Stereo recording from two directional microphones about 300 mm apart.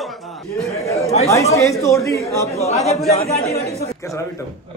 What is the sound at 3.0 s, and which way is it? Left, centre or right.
Speech, left.